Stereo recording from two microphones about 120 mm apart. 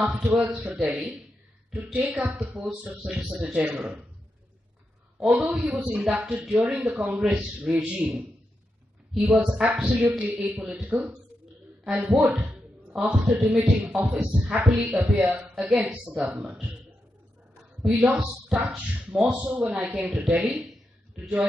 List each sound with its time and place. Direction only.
0.0 s a man's voice: 10° right (ahead or behind)
5.2 s a man's voice: 5° right (ahead or behind)
17.8 s a man's voice: 5° right (ahead or behind)
18.7 s a man's voice: centre (ahead or behind)
19.3 s a man's voice: 10° right (ahead or behind)
20.3 s a man's voice: centre (ahead or behind)